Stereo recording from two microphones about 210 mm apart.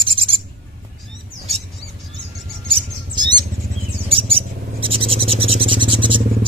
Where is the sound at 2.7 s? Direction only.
20° right (ahead or behind).